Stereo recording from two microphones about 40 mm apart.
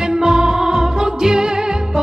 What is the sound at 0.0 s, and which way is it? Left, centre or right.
Music, centre.